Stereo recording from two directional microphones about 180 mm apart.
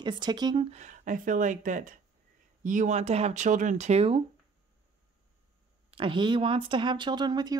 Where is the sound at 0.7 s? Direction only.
45° right (ahead or behind).